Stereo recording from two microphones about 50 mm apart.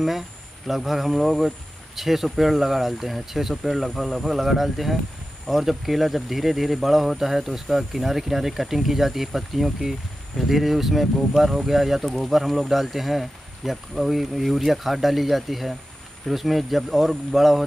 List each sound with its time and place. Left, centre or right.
0.7 s speech: centre